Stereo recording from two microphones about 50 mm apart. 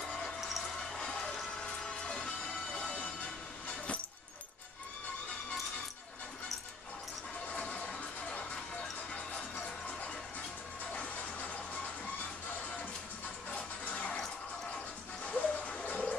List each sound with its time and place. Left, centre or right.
0.0 s a sound: centre
0.9 s music: centre
2.7 s music: left
7.5 s music: left
11.0 s music: left
13.5 s music: left
15.2 s music: left